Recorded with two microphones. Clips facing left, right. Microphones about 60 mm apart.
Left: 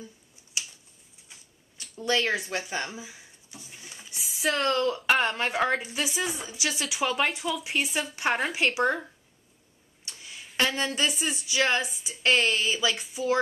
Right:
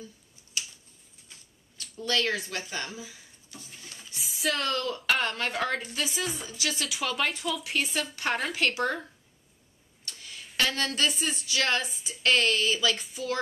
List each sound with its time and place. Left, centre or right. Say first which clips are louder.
0.6 s a sound: even; left
4.2 s speech: left 3 dB; centre
5.2 s a woman's voice: left 3 dB; centre
6.9 s speech: left 5 dB; centre
10.0 s speech: even; centre
13.0 s speech: left 5 dB; centre